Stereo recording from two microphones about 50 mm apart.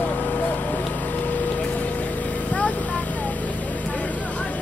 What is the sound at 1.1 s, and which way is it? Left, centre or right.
Pump, left.